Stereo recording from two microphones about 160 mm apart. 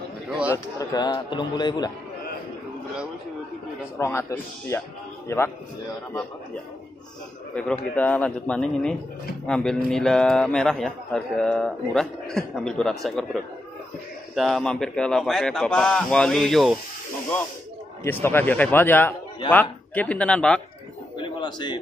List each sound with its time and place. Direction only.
0.5 s a man's voice: 25° left (ahead or behind)
4.0 s a man's voice: 15° left (ahead or behind)
7.5 s a man's voice: 10° left (ahead or behind)
18.0 s a man's voice: 15° left (ahead or behind)
21.2 s bird: 30° left (ahead or behind)